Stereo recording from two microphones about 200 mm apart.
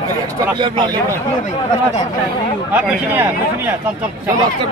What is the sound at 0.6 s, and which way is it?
Speech, 25° right (ahead or behind).